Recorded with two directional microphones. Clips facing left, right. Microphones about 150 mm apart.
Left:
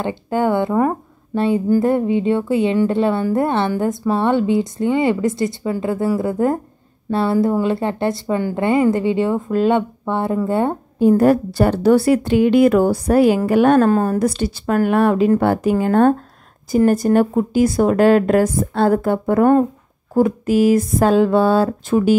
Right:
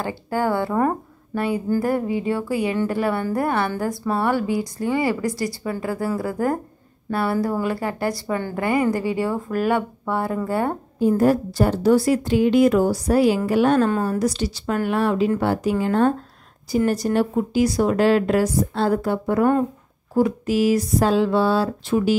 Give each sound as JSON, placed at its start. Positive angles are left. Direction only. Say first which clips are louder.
{"t": 0.0, "sound": "speech", "louder": "left 4 dB", "side_deg": 20}
{"t": 1.3, "sound": "a sound", "louder": "left 6 dB", "side_deg": 25}
{"t": 1.7, "sound": "a woman's voice", "louder": "left 5 dB", "side_deg": 20}
{"t": 11.0, "sound": "a woman's voice", "louder": "left 5 dB", "side_deg": 65}